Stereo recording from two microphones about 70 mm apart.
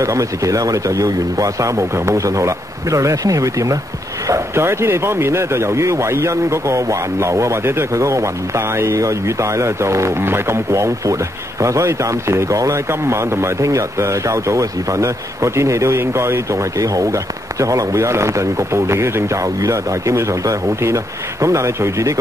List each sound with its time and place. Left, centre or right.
0.0 s speech: right
4.3 s speech: right